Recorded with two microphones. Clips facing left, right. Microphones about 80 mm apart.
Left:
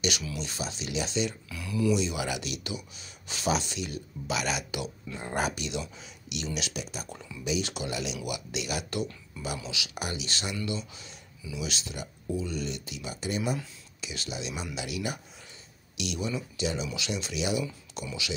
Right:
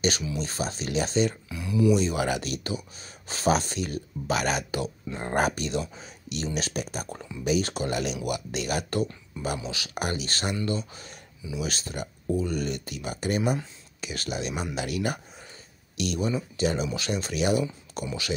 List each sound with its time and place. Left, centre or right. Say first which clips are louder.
0.4 s speech: right 5 dB; right
1.5 s speech: right 5 dB; right
2.0 s speech: right 5 dB; right